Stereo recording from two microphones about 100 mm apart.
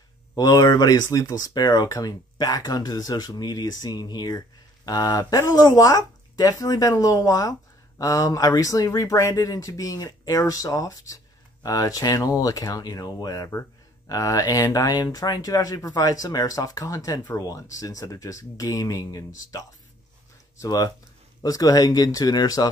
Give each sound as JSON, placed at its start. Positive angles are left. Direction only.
{"t": 0.3, "sound": "speech", "side_deg": 35}